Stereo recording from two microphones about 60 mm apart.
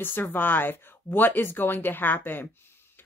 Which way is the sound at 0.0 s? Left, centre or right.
Left.